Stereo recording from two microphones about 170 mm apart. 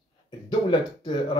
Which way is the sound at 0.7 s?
25° left (ahead or behind).